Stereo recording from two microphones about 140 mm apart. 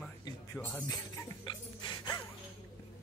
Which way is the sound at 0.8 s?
25° left (ahead or behind).